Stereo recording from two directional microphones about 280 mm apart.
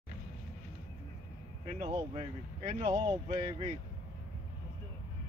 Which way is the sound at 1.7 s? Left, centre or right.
Centre.